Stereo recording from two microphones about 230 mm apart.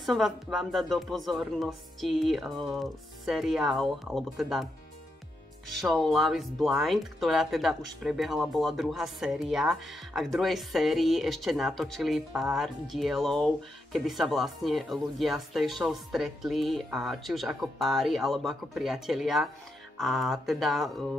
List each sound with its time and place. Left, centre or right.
0.0 s speech: centre
5.8 s speech: centre